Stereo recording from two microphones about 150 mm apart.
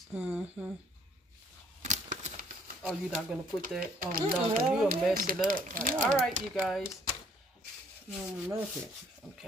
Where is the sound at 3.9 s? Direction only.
75° right (ahead or behind).